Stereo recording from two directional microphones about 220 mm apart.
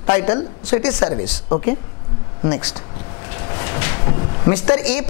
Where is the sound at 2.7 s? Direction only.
20° left (ahead or behind).